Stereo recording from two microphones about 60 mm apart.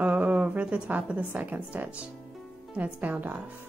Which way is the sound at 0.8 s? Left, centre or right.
Right.